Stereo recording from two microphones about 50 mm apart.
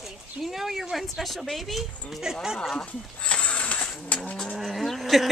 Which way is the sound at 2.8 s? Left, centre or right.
Left.